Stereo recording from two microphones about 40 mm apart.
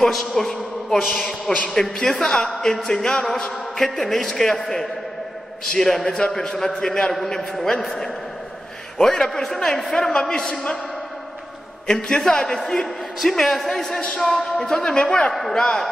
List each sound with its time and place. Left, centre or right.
0.0 s a man's voice: centre
0.5 s a sound: centre
1.1 s a man's voice: centre
1.7 s a man's voice: centre
12.3 s a man's voice: centre